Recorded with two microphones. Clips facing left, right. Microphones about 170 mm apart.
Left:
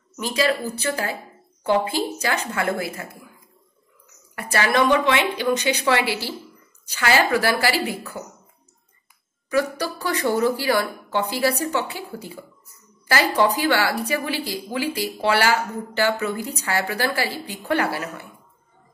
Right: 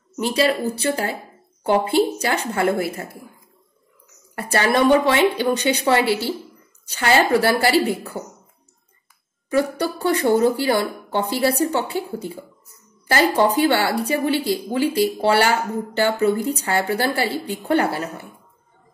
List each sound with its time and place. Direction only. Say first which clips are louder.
0.2 s a woman's voice: right 3 dB; 30° right (ahead or behind)
4.4 s a woman's voice: right 2 dB; 30° right (ahead or behind)
9.5 s a woman's voice: right 2 dB; 25° right (ahead or behind)